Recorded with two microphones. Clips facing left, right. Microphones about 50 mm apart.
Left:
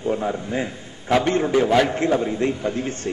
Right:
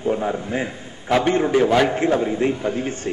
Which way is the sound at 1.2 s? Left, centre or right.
Right.